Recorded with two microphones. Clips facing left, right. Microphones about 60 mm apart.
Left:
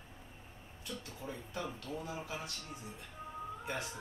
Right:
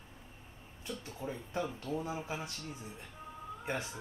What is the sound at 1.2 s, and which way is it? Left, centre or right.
Speech, centre.